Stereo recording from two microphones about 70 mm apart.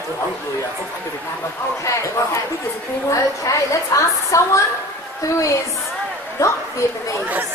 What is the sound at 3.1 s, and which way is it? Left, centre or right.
A woman's voice, left.